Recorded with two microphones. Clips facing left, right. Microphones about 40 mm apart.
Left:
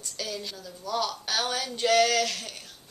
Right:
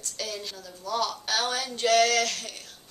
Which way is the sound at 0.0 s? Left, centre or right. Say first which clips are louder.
Even; centre.